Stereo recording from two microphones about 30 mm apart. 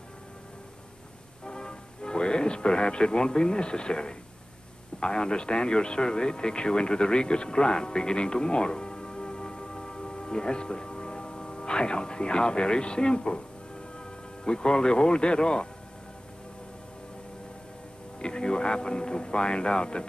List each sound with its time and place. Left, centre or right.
1.4 s music: left
5.0 s speech: left
18.2 s speech: left